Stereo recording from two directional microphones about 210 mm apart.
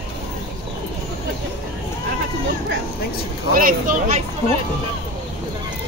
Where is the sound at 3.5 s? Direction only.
40° right (ahead or behind).